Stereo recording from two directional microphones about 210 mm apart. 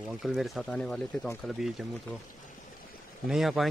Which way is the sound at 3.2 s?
Centre (ahead or behind).